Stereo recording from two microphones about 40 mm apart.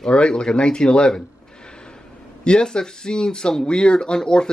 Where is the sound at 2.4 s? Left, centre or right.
Left.